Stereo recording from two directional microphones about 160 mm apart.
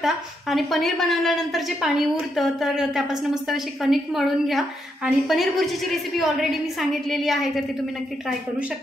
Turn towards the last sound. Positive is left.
turn(degrees=0)  # may be behind; listen again after turning